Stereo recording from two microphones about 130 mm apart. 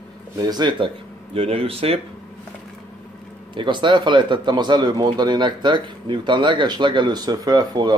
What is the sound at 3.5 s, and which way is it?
Speech, 40° right (ahead or behind).